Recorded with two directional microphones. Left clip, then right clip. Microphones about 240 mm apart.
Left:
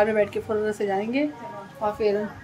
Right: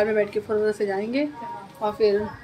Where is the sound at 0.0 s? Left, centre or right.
Centre.